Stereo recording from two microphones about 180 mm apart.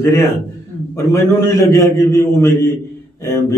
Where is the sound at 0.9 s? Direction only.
15° left (ahead or behind).